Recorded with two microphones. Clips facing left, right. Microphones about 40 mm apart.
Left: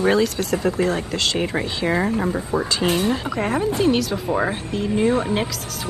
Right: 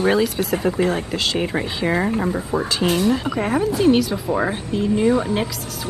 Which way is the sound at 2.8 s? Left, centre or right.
Left.